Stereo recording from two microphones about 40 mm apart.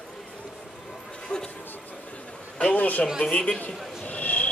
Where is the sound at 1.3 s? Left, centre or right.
Left.